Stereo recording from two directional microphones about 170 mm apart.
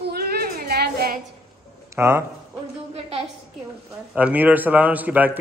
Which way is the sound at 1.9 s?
15° right (ahead or behind).